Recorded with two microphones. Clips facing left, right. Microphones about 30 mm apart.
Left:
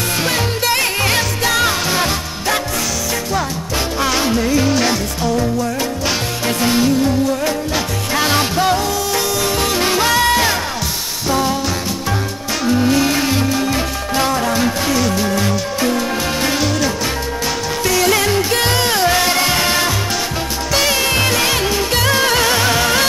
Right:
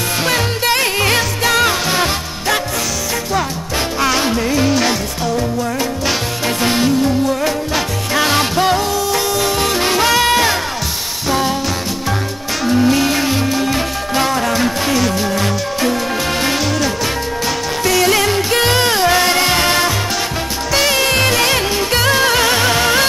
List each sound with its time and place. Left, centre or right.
0.7 s music: centre
4.1 s music: centre
6.6 s music: centre
9.8 s music: centre
11.2 s music: centre
12.6 s music: centre
17.8 s music: centre
18.5 s music: right
19.0 s music: centre